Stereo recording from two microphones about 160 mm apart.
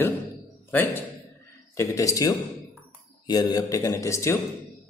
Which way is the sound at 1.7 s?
20° left (ahead or behind).